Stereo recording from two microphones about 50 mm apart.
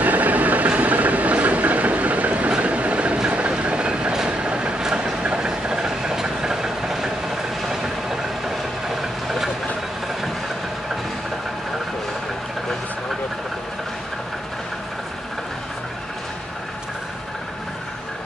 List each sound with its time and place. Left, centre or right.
0.0 s train: right; by 8.3 s centre
8.8 s vehicle: centre